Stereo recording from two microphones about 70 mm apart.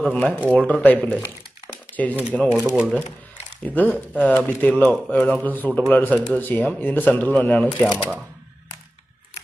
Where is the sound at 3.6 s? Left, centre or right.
Left.